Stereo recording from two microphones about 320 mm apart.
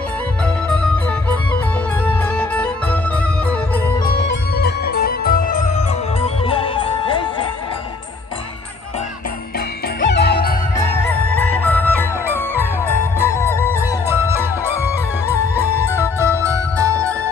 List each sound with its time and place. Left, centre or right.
2.0 s music: centre
4.1 s music: left; by 7.4 s centre
9.9 s music: left
10.9 s music: centre
14.0 s music: centre